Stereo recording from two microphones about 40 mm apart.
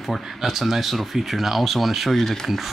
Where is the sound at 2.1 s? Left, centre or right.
Centre.